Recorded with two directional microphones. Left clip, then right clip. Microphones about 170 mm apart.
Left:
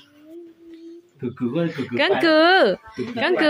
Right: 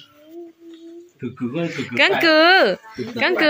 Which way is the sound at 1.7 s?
15° left (ahead or behind).